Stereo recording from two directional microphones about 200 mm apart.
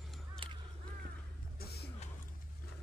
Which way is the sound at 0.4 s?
25° right (ahead or behind).